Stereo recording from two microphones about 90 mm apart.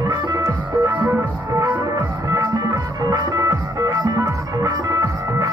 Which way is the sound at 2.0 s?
45° right (ahead or behind).